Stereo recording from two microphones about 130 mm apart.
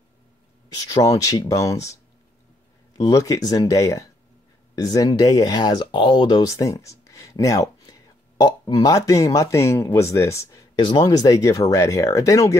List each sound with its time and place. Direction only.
0.7 s speech: 25° left (ahead or behind)
3.0 s speech: 25° left (ahead or behind)
10.8 s speech: 40° left (ahead or behind)
11.1 s speech: 25° left (ahead or behind)